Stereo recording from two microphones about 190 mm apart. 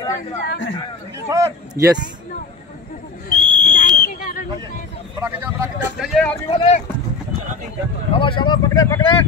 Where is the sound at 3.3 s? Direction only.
50° left (ahead or behind).